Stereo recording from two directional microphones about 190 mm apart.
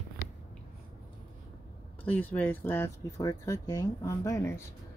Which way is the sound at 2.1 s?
10° left (ahead or behind).